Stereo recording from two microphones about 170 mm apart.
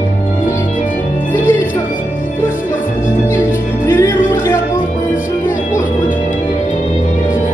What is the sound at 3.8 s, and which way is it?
Music, 15° left (ahead or behind).